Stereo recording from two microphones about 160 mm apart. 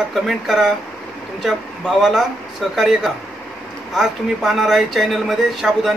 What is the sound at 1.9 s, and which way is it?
Speech, centre (ahead or behind).